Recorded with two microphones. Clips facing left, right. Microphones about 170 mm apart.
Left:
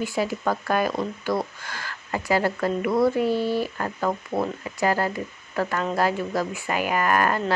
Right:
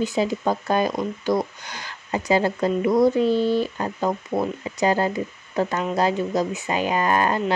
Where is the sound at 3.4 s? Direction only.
10° left (ahead or behind).